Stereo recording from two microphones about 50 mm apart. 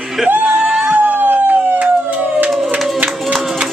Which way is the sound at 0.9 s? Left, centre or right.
Right.